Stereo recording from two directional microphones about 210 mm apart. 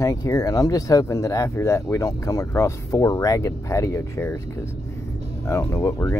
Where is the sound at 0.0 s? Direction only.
15° left (ahead or behind).